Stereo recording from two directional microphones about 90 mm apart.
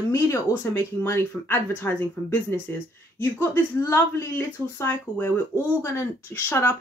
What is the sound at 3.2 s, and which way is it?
Speech, 30° left (ahead or behind).